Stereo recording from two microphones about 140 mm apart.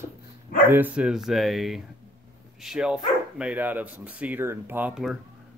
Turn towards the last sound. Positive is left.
turn(degrees=-10)  # may be behind; listen again after turning